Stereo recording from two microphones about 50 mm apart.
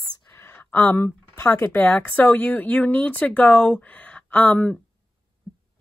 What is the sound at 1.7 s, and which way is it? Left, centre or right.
Speech, left.